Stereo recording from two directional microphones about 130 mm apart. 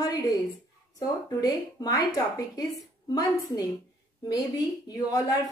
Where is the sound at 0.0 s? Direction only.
30° left (ahead or behind).